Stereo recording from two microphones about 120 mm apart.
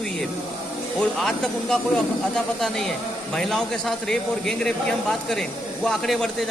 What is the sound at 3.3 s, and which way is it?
Speech, 5° left (ahead or behind).